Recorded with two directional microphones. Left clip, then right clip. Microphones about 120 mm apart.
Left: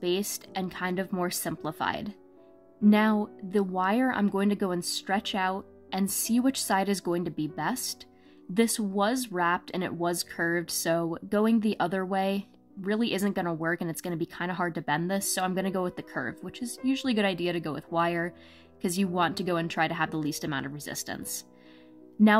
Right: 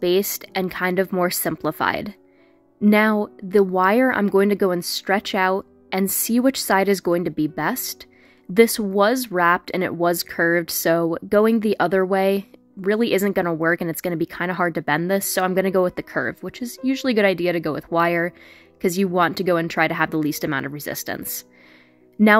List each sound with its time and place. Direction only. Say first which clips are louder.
0.0 s speech: right 10 dB; 45° right (ahead or behind)
22.2 s speech: right 8 dB; 25° right (ahead or behind)